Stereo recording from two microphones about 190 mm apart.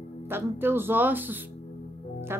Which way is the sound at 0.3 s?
10° right (ahead or behind).